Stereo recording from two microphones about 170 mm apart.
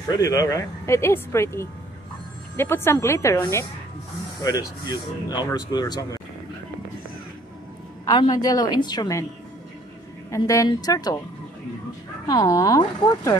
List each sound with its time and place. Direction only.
0.1 s speech: 20° left (ahead or behind)
8.0 s speech: 25° left (ahead or behind)
10.3 s speech: 20° left (ahead or behind)
12.3 s speech: 20° left (ahead or behind)